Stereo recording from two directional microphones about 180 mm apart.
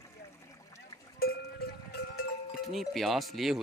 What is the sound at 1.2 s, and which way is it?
Livestock, 60° left (ahead or behind).